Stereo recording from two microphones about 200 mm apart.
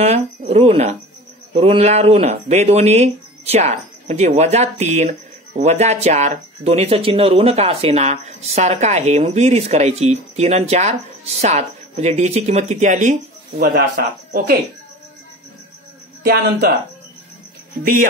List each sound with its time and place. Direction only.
0.0 s speech: 30° right (ahead or behind)
13.6 s speech: 50° right (ahead or behind)
16.2 s speech: 50° right (ahead or behind)